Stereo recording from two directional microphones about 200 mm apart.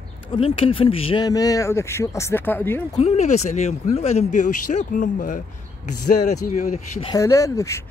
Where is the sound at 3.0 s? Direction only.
35° left (ahead or behind).